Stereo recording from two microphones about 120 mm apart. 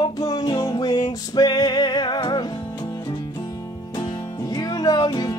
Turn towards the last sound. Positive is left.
turn(degrees=35)  # may be behind; listen again after turning